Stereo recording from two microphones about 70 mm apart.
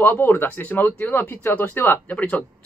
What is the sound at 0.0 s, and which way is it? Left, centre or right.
Speech, left.